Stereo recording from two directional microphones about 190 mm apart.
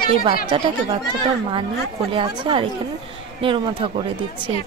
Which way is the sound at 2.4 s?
25° right (ahead or behind).